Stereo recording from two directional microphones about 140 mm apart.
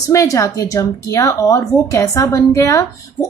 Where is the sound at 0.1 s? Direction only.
20° left (ahead or behind).